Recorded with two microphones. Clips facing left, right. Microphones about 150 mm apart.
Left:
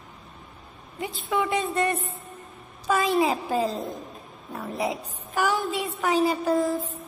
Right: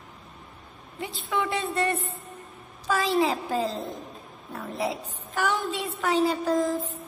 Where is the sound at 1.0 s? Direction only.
15° left (ahead or behind).